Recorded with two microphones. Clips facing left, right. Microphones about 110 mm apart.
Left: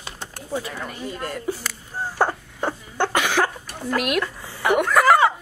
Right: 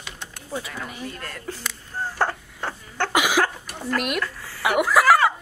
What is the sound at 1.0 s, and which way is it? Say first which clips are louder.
Speech: left 6 dB; 15° left (ahead or behind).